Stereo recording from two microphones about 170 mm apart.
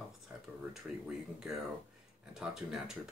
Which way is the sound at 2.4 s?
5° right (ahead or behind).